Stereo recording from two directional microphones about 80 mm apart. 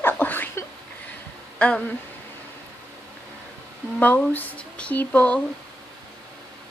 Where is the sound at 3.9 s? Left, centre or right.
Left.